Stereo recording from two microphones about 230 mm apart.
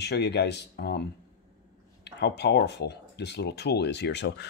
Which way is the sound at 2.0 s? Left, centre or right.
Left.